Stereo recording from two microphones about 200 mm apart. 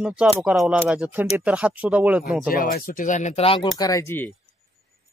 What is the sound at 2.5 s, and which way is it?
Speech, 45° left (ahead or behind).